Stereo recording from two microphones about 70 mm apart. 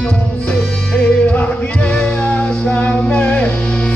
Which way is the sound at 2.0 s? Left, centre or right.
Centre.